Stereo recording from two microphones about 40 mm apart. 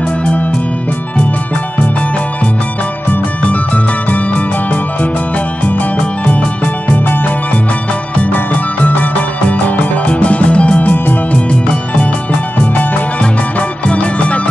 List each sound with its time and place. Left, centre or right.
0.2 s music: left
3.4 s music: left
7.1 s music: left
10.8 s music: left
12.5 s music: left
13.2 s music: left